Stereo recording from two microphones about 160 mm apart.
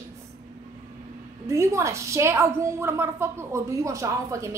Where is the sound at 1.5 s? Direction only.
15° right (ahead or behind).